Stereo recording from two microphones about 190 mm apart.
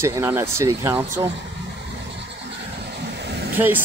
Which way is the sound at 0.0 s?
15° right (ahead or behind).